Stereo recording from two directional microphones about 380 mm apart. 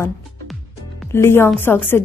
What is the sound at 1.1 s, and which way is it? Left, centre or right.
Speech, centre.